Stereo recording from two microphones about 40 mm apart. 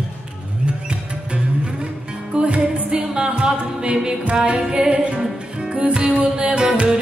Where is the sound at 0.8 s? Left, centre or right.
Right.